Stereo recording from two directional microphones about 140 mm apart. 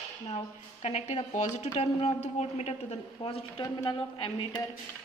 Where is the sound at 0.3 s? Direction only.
50° left (ahead or behind).